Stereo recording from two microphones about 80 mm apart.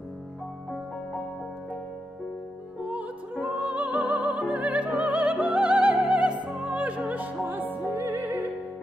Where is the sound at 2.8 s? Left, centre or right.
Centre.